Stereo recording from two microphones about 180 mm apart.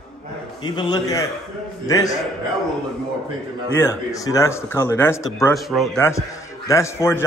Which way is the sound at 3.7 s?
15° left (ahead or behind).